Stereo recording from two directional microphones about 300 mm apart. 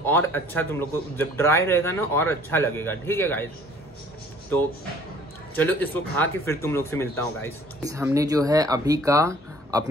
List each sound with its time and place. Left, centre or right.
0.0 s speech: centre
5.6 s speech: centre
7.8 s speech: centre